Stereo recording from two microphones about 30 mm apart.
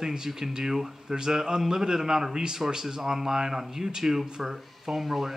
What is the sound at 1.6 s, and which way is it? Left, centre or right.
A man's voice, centre.